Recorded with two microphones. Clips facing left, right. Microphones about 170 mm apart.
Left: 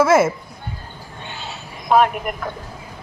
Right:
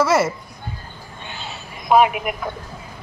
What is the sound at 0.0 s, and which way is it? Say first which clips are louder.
Speech: left 3 dB; 50° left (ahead or behind).